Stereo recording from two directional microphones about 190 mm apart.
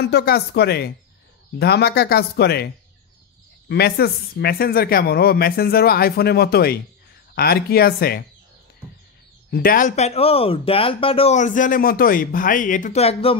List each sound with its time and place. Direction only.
0.0 s speech: 55° left (ahead or behind)
9.5 s speech: 50° left (ahead or behind); by 13.4 s 30° left (ahead or behind)